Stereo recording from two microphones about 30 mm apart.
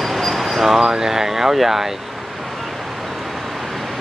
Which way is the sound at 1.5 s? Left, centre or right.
Centre.